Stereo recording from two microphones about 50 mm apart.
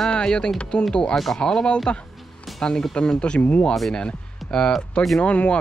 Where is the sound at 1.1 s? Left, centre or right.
Centre.